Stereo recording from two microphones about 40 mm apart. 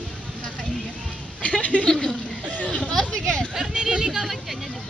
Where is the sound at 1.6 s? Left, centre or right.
Left.